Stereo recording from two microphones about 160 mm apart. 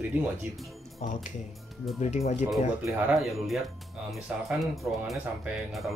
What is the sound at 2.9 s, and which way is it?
Speech, 5° right (ahead or behind).